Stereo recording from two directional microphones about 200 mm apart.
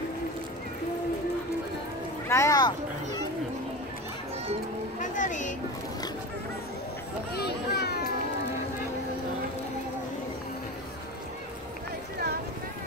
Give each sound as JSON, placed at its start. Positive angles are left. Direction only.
{"t": 2.2, "sound": "speech", "side_deg": 15}
{"t": 5.1, "sound": "a sound", "side_deg": 40}
{"t": 7.3, "sound": "children playing", "side_deg": 55}